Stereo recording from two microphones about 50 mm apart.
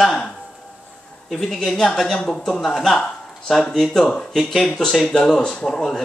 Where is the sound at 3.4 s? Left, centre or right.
Centre.